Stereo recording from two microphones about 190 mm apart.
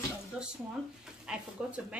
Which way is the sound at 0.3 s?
5° right (ahead or behind).